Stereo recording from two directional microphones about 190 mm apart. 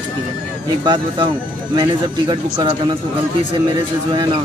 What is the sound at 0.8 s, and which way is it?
Speech, 25° right (ahead or behind).